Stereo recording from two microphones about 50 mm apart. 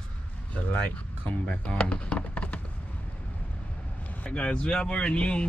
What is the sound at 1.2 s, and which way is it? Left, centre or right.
Speech, left.